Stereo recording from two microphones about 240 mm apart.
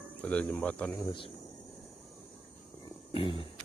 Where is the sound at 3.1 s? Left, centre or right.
Left.